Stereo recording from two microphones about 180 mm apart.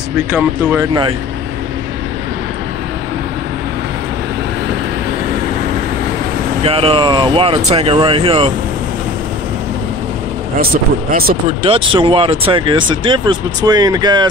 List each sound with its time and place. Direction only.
0.3 s speech: 5° right (ahead or behind)
6.6 s speech: 30° right (ahead or behind)
10.6 s speech: 55° right (ahead or behind)
11.4 s speech: 30° right (ahead or behind)